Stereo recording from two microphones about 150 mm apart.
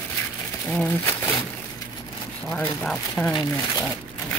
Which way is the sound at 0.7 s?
10° left (ahead or behind).